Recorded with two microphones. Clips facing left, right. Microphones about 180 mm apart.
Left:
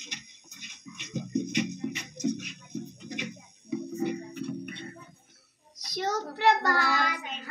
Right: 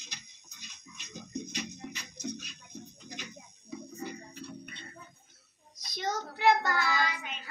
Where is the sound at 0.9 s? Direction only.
70° left (ahead or behind).